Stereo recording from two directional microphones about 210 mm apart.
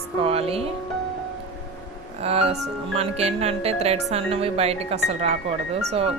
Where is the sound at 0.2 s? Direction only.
30° right (ahead or behind).